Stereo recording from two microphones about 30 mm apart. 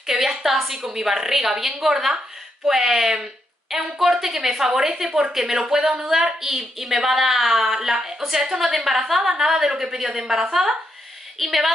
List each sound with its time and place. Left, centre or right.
0.0 s a woman's voice: centre
11.3 s a woman's voice: centre